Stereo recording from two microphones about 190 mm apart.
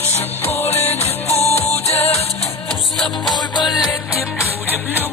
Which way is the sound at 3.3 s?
25° left (ahead or behind).